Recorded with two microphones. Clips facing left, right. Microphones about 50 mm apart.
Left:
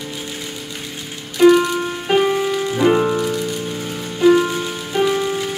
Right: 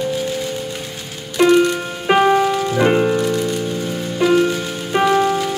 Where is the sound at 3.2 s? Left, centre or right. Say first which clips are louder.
Right 2 dB; centre.